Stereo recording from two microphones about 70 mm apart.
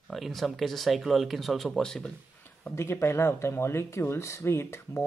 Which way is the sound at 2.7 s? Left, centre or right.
Left.